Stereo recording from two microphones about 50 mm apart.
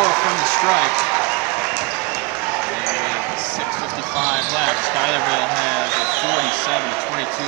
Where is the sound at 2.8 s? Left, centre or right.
Centre.